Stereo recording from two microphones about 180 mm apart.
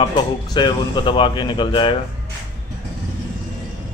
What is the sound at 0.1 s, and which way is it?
A man's voice, 25° left (ahead or behind).